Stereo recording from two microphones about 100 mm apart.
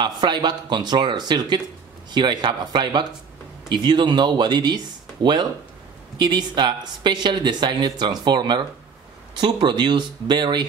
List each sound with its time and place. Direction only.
0.0 s speech: 50° right (ahead or behind)